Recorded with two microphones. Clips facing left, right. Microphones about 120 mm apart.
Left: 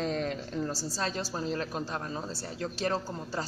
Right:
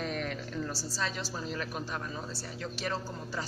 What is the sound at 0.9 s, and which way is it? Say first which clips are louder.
A woman's voice: left 3 dB; 40° left (ahead or behind).